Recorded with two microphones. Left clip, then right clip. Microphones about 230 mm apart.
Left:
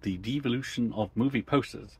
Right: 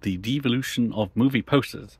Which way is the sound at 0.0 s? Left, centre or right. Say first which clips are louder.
Right 5 dB; right.